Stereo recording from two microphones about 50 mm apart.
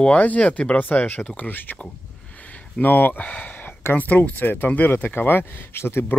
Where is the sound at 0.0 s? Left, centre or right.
Left.